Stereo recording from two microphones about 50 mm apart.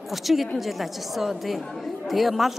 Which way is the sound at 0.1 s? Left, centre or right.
Centre.